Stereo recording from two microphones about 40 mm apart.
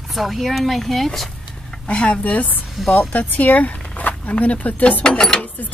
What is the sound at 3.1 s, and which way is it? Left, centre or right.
Speech, left.